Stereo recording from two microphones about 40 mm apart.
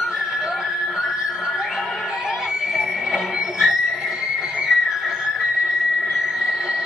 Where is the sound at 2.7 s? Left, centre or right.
Centre.